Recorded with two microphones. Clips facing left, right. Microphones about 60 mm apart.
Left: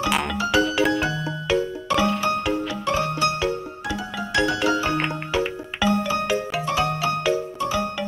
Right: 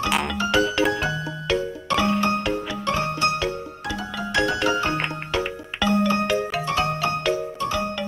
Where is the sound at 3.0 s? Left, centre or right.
Right.